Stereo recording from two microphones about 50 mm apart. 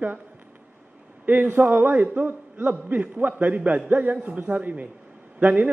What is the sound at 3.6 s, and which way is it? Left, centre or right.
Speech, right.